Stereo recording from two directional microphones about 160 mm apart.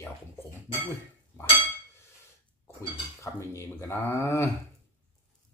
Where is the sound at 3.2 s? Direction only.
20° left (ahead or behind).